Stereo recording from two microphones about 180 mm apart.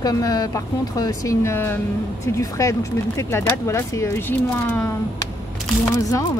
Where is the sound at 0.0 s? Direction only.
20° left (ahead or behind).